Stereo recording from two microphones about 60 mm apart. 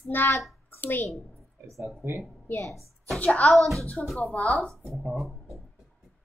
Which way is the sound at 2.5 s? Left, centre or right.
Left.